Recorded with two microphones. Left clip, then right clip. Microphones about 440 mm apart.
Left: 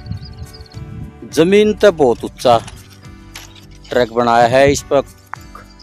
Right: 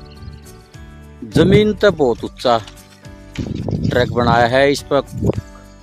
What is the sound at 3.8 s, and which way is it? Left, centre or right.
Speech, right.